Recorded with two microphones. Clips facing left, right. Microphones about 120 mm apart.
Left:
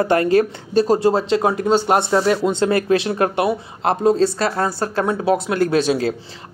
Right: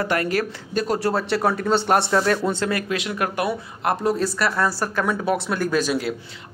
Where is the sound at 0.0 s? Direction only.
30° left (ahead or behind).